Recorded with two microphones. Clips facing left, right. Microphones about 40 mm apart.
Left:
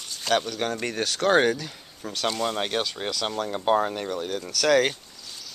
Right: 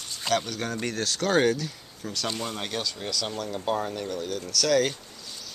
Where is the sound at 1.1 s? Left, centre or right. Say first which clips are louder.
Left 2 dB; left.